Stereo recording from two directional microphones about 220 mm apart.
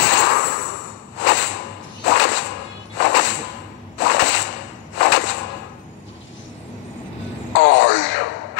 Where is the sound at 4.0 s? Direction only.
55° left (ahead or behind).